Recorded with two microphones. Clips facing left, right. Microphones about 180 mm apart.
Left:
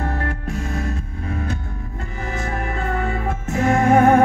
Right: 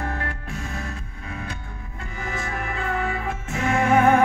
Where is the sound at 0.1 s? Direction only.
35° left (ahead or behind).